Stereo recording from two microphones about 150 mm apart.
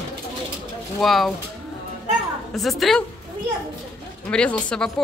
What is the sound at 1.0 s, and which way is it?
Speech, centre (ahead or behind).